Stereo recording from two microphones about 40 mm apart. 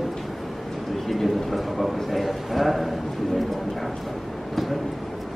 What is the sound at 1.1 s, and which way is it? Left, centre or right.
A woman's voice, centre.